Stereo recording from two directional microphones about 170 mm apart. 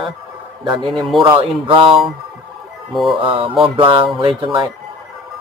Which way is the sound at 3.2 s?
30° right (ahead or behind).